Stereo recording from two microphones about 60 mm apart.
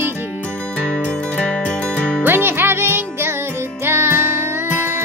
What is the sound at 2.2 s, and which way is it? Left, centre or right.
Music, right.